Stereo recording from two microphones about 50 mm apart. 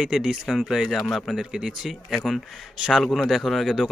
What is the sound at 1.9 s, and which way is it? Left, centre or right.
Speech, centre.